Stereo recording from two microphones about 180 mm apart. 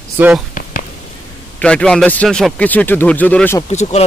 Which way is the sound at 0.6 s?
45° left (ahead or behind).